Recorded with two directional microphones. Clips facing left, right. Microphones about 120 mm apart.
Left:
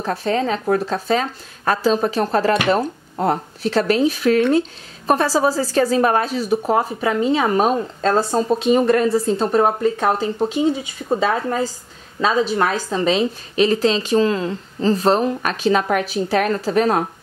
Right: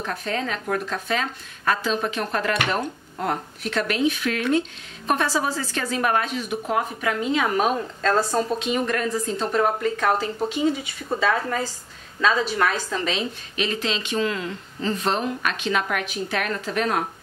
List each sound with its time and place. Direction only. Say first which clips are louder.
0.0 s a woman's voice: left 7 dB; 35° left (ahead or behind)